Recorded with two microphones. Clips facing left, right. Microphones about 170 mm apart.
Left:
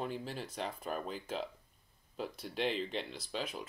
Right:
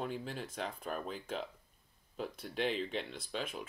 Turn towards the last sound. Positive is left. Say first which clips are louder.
# even
turn(degrees=0)  # may be behind; listen again after turning